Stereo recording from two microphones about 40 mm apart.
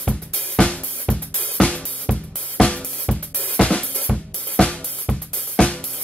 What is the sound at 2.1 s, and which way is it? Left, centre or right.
Music, right.